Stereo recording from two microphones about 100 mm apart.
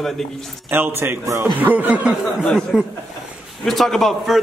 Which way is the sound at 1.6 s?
15° right (ahead or behind).